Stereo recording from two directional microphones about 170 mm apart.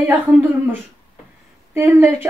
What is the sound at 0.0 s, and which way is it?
Speech, 10° right (ahead or behind).